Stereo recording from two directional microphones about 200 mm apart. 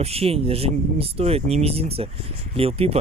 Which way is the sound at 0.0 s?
30° right (ahead or behind).